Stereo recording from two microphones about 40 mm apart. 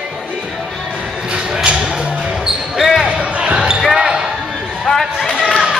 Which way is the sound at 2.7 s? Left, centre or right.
Centre.